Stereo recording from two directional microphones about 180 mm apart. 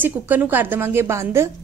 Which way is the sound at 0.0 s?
10° right (ahead or behind).